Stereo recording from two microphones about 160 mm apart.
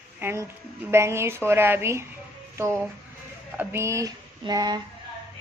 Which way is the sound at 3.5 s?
15° right (ahead or behind).